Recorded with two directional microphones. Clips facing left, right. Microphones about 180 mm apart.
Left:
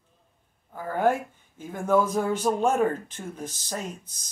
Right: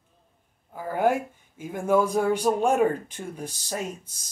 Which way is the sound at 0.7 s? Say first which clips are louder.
Right 1 dB; 10° right (ahead or behind).